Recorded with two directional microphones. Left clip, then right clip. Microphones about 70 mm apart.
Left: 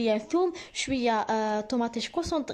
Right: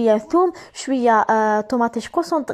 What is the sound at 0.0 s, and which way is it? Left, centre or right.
Speech, right.